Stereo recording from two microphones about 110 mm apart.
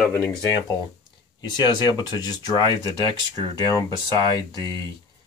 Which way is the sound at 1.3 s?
40° left (ahead or behind).